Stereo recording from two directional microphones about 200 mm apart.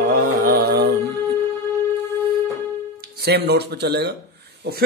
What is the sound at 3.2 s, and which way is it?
Speech, 55° right (ahead or behind).